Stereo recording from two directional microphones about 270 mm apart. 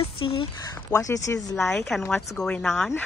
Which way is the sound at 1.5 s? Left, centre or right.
Centre.